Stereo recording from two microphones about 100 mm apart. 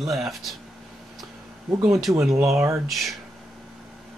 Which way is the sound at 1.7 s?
30° right (ahead or behind).